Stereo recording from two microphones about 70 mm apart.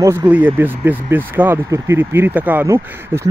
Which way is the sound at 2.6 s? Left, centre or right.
Right.